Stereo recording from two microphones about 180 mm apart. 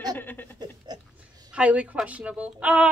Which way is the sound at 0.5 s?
25° right (ahead or behind).